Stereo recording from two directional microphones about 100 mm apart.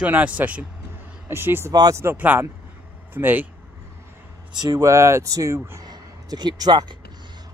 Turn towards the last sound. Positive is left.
turn(degrees=-45)  # may be behind; listen again after turning